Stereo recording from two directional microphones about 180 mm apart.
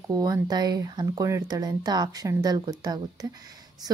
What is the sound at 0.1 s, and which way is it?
A woman's voice, 20° right (ahead or behind).